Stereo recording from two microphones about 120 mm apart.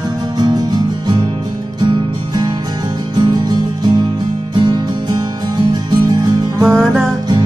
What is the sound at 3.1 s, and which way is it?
Music, 35° right (ahead or behind).